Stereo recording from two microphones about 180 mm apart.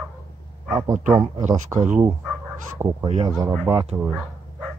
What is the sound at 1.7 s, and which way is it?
Speech, 15° right (ahead or behind).